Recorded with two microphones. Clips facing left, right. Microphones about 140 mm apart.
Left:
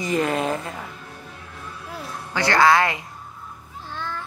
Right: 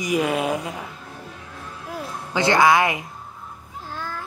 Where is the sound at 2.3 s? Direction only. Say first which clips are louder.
Right 1 dB; 20° right (ahead or behind).